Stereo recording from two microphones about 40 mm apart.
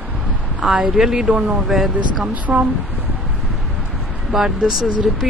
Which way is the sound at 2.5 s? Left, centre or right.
Centre.